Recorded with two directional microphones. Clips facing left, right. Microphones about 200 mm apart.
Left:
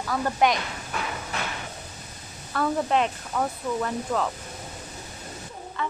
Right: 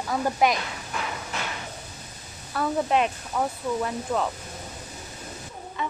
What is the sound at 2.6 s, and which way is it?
Speech, 10° right (ahead or behind).